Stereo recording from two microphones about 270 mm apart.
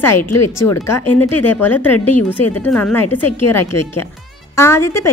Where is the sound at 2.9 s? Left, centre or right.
Left.